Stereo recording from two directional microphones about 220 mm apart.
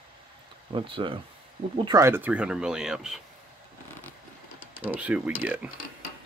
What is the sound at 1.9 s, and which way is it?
Speech, 15° right (ahead or behind).